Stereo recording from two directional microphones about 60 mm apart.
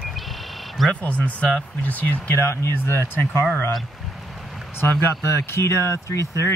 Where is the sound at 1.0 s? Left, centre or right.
Left.